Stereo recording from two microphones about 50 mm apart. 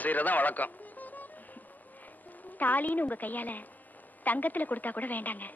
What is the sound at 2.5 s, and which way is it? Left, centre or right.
A woman's voice, left.